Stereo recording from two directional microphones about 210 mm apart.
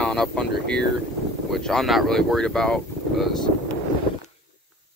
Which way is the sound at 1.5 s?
Centre (ahead or behind).